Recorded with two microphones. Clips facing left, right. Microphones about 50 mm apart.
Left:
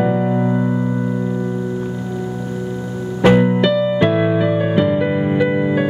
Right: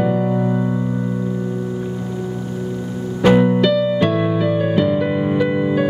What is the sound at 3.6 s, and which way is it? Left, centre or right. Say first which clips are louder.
Music: left 1 dB; centre.